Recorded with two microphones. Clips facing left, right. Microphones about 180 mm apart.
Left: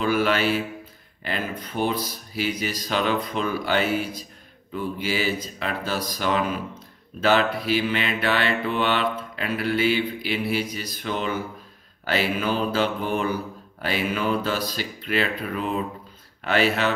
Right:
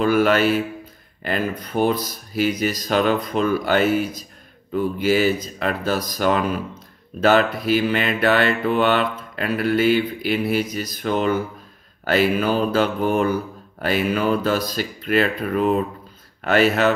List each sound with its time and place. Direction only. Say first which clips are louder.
0.0 s mantra: right 5 dB; 50° right (ahead or behind)